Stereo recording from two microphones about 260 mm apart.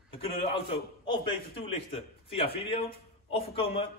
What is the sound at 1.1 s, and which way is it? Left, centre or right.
A man's voice, left.